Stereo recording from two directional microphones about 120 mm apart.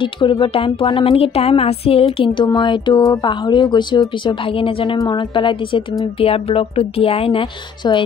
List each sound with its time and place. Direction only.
0.2 s speech: 45° left (ahead or behind)
6.2 s speech: 55° left (ahead or behind)